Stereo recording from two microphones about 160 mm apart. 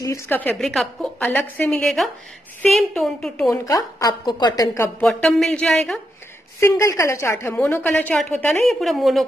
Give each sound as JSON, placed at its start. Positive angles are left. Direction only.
{"t": 0.0, "sound": "a woman's voice", "side_deg": 15}
{"t": 3.4, "sound": "a woman's voice", "side_deg": 20}
{"t": 5.0, "sound": "a woman's voice", "side_deg": 0}
{"t": 6.6, "sound": "a woman's voice", "side_deg": 20}